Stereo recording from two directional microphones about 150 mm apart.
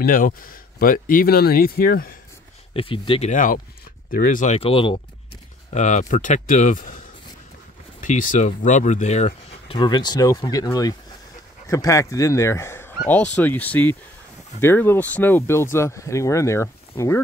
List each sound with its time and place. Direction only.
0.0 s speech: 70° left (ahead or behind)
2.7 s speech: 35° left (ahead or behind)
3.3 s speech: 60° left (ahead or behind)
4.6 s speech: 35° left (ahead or behind)
5.7 s speech: 55° left (ahead or behind)
9.7 s speech: 30° left (ahead or behind)